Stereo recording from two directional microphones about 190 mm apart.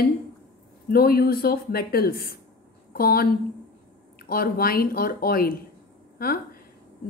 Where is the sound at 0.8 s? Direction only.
55° left (ahead or behind).